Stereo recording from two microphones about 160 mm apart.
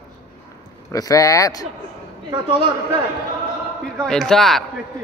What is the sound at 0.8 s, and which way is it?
Speech, 20° left (ahead or behind).